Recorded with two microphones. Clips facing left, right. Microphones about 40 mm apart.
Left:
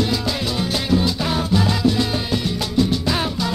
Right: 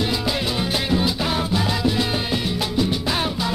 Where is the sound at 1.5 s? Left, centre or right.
Centre.